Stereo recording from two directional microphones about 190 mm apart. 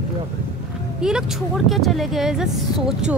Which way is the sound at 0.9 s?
5° right (ahead or behind).